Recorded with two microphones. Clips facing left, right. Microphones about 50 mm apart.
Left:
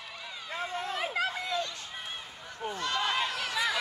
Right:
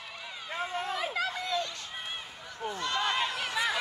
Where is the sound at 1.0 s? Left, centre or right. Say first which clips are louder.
Left 1 dB; left.